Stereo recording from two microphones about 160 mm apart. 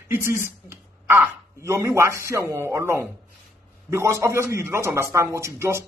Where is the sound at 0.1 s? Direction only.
15° right (ahead or behind).